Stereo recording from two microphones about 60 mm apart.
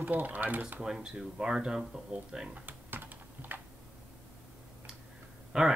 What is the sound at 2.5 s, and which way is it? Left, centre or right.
Typing, right.